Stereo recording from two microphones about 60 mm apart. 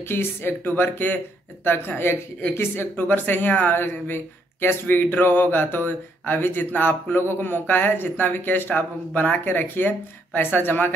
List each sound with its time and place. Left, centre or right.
0.1 s speech: left